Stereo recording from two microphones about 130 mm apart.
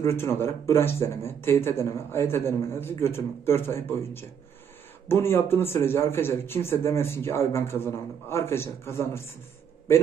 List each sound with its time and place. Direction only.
0.0 s a man's voice: 20° left (ahead or behind)